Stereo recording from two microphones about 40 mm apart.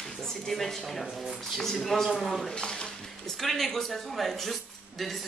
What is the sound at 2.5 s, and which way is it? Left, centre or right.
Speech, left.